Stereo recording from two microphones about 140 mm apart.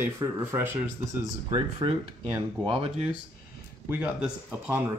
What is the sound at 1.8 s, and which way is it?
Speech, 35° right (ahead or behind).